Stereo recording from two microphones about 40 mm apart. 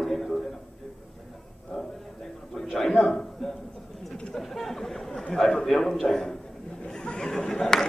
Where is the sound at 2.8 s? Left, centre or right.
Centre.